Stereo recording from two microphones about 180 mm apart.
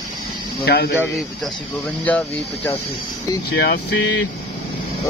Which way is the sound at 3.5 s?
75° left (ahead or behind).